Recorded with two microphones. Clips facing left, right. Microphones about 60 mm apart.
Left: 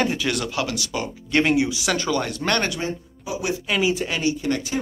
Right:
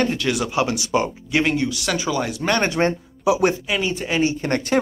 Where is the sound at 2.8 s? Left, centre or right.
Right.